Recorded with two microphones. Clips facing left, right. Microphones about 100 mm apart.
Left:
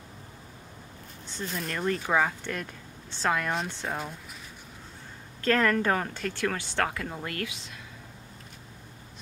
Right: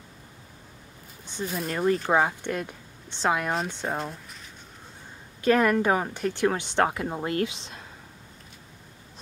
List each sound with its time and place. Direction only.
1.2 s a sound: 15° right (ahead or behind)
1.5 s speech: 5° right (ahead or behind)
2.0 s speech: 20° right (ahead or behind)
3.5 s speech: 5° right (ahead or behind)
5.4 s speech: 15° right (ahead or behind)